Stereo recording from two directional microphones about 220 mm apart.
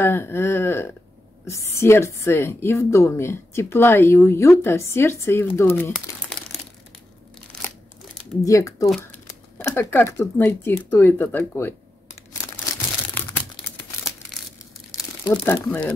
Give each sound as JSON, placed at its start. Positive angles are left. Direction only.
{"t": 0.0, "sound": "a woman's voice", "side_deg": 10}
{"t": 5.9, "sound": "crumpling", "side_deg": 0}
{"t": 8.5, "sound": "a woman's voice", "side_deg": 15}
{"t": 13.1, "sound": "crumpling", "side_deg": 10}
{"t": 15.3, "sound": "a woman's voice", "side_deg": 10}